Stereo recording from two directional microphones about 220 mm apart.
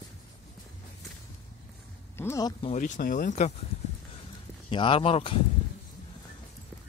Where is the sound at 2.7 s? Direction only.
35° left (ahead or behind).